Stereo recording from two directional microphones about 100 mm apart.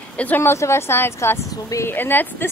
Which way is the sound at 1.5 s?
35° left (ahead or behind).